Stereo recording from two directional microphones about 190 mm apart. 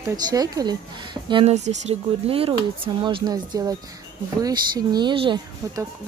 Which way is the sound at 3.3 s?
20° right (ahead or behind).